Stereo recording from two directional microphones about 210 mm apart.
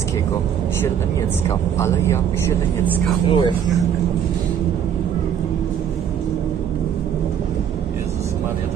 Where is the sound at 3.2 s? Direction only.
25° left (ahead or behind).